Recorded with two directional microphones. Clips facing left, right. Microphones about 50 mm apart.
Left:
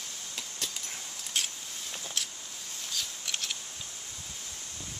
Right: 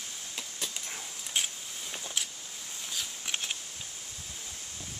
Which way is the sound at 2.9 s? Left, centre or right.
Centre.